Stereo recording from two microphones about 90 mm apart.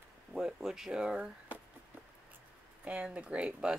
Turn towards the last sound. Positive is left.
turn(degrees=-10)  # may be behind; listen again after turning